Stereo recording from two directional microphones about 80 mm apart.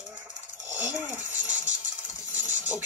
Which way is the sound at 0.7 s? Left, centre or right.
Right.